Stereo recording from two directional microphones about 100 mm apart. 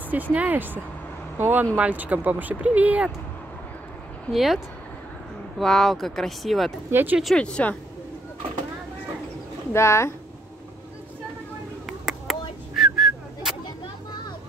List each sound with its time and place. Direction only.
0.1 s speech: 15° right (ahead or behind)
4.3 s speech: centre (ahead or behind)
5.6 s speech: 5° left (ahead or behind)
6.9 s speech: 20° right (ahead or behind)
7.3 s speech: 10° left (ahead or behind)
9.7 s speech: 30° left (ahead or behind)
11.8 s whistling: centre (ahead or behind)